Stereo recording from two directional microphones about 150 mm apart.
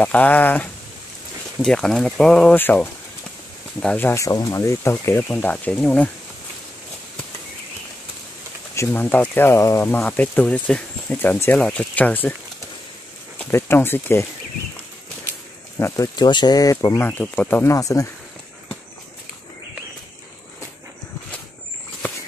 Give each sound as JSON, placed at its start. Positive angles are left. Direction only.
{"t": 0.0, "sound": "speech", "side_deg": 10}
{"t": 8.7, "sound": "speech", "side_deg": 15}
{"t": 13.4, "sound": "speech", "side_deg": 15}
{"t": 15.8, "sound": "speech", "side_deg": 25}